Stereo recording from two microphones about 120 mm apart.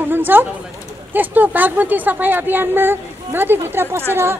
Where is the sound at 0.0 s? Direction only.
15° right (ahead or behind).